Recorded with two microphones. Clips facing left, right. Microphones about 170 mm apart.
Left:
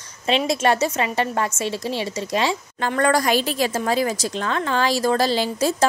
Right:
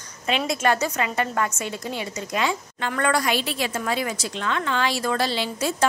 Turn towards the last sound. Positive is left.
turn(degrees=40)  # may be behind; listen again after turning